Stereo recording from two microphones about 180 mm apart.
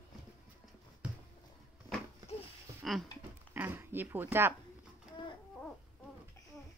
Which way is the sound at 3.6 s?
10° right (ahead or behind).